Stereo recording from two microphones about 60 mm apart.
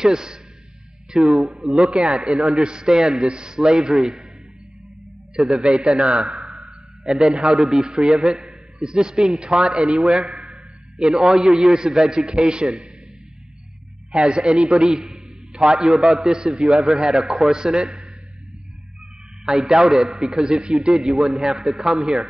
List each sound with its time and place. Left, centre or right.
0.0 s a man's voice: centre
5.3 s a man's voice: centre
6.1 s a sound: centre
7.1 s a man's voice: centre
7.5 s a man's voice: centre
7.8 s a man's voice: centre
8.1 s a man's voice: centre
8.4 s a man's voice: centre
14.1 s a man's voice: centre
19.4 s a man's voice: centre